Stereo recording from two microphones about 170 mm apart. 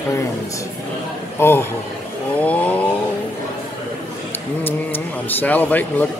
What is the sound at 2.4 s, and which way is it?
Chainsaw, 10° left (ahead or behind).